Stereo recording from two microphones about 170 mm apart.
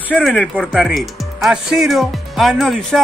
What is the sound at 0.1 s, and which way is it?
Speech, 10° left (ahead or behind).